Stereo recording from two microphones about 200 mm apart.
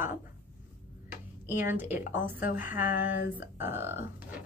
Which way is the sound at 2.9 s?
40° left (ahead or behind).